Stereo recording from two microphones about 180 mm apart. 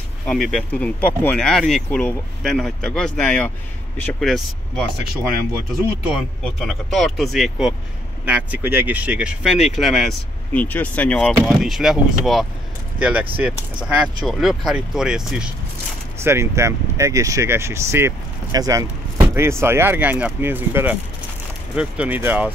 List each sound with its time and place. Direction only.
0.3 s speech: centre (ahead or behind)
4.9 s speech: 60° right (ahead or behind)
5.7 s speech: centre (ahead or behind)
16.3 s speech: 15° right (ahead or behind)